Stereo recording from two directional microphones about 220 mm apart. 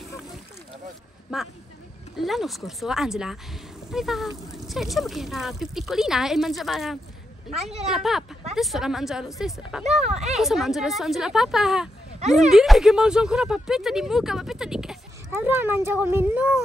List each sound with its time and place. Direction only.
1.3 s speech: 5° right (ahead or behind)
9.8 s speech: 30° right (ahead or behind)
10.3 s speech: centre (ahead or behind)